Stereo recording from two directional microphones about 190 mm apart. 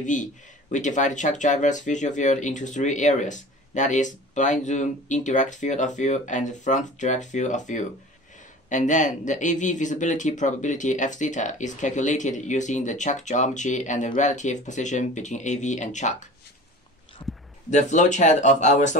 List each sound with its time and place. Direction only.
0.0 s speech: 40° left (ahead or behind)
17.6 s speech: 40° left (ahead or behind)